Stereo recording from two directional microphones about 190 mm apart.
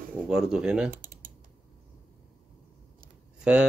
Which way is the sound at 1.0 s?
45° right (ahead or behind).